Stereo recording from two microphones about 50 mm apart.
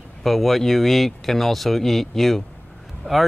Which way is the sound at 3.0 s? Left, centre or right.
Left.